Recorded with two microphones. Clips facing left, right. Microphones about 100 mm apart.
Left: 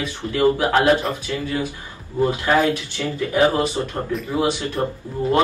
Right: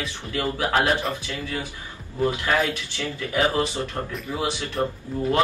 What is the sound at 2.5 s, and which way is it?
Speech, 35° left (ahead or behind).